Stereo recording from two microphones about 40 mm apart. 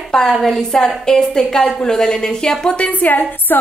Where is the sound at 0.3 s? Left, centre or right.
Centre.